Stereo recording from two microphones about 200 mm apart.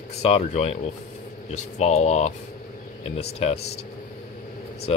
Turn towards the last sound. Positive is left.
turn(degrees=30)  # may be behind; listen again after turning